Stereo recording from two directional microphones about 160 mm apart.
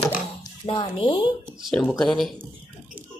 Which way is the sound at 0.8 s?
35° left (ahead or behind).